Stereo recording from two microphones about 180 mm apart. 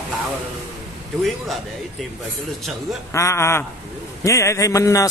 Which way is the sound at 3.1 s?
15° left (ahead or behind).